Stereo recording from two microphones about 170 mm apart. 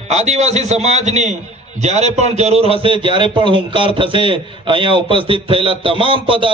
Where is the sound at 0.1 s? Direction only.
40° right (ahead or behind).